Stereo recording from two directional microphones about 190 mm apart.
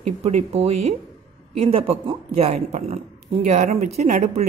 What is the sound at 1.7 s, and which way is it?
A woman's voice, 30° right (ahead or behind).